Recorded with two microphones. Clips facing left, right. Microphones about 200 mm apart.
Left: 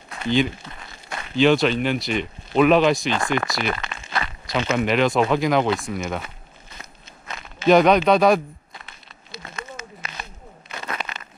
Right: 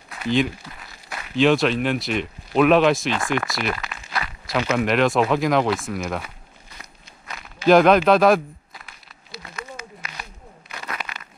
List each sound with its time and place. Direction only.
0.2 s speech: centre (ahead or behind)
0.7 s a sound: 5° right (ahead or behind)
1.3 s speech: centre (ahead or behind)
3.9 s walk: 25° left (ahead or behind)
4.6 s speech: centre (ahead or behind)
6.8 s walk: 25° left (ahead or behind)
7.6 s speech: centre (ahead or behind)
9.4 s a sound: 25° left (ahead or behind)